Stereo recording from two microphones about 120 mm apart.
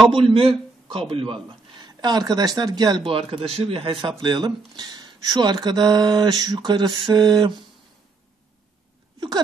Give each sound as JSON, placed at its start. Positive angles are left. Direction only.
{"t": 0.1, "sound": "speech", "side_deg": -50}